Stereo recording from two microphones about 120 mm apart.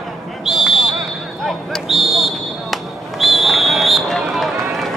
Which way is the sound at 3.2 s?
Centre (ahead or behind).